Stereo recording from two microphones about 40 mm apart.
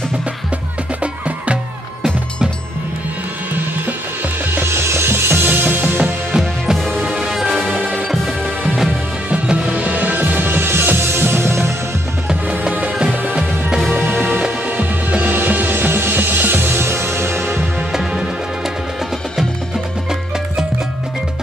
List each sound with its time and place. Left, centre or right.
1.0 s music: right
4.5 s music: right
5.4 s music: right
6.3 s music: centre
6.8 s music: centre
9.3 s music: right
13.1 s music: right
14.8 s music: right
15.7 s music: right
17.9 s music: centre